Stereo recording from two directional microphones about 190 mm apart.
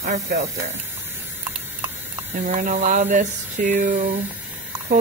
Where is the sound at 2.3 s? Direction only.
45° right (ahead or behind).